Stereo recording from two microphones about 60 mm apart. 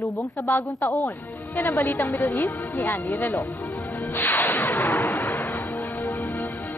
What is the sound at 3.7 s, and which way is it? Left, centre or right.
Music, left.